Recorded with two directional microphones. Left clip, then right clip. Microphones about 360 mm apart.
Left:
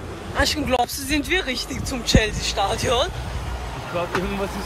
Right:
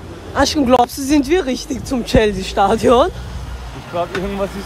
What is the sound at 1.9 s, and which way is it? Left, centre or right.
Speech, centre.